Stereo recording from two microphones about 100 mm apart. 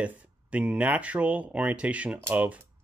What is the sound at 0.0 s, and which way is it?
Speech, 15° right (ahead or behind).